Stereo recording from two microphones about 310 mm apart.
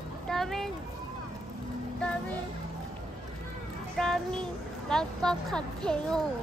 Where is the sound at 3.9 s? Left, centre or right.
Centre.